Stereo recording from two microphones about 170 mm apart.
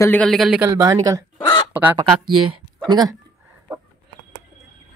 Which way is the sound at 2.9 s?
25° right (ahead or behind).